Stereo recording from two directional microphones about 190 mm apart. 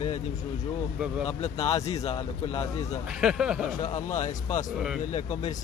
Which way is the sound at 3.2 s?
5° right (ahead or behind).